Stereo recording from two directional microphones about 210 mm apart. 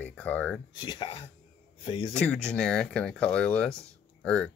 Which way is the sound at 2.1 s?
5° left (ahead or behind).